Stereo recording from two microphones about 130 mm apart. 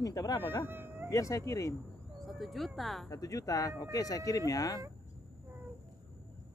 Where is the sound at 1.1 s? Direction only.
25° left (ahead or behind).